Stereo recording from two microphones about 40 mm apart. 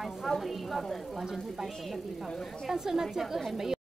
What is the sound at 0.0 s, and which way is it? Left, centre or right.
A woman's voice, centre.